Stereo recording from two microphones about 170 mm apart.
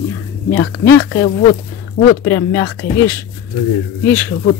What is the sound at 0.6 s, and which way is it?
Speech, 90° left.